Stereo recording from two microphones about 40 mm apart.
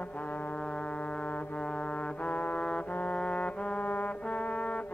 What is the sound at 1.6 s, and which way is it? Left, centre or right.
Trombone, left.